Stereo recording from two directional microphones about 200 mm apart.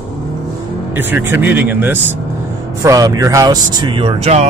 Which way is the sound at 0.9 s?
10° right (ahead or behind).